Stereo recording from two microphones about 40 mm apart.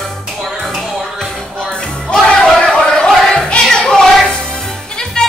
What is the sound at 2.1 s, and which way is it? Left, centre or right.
Crowd, left.